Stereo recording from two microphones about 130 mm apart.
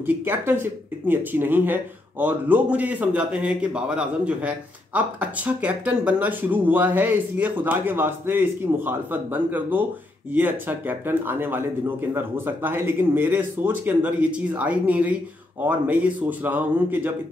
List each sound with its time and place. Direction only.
0.0 s speech: 15° right (ahead or behind)